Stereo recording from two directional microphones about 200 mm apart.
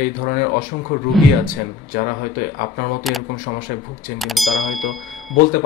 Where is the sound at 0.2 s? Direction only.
45° left (ahead or behind).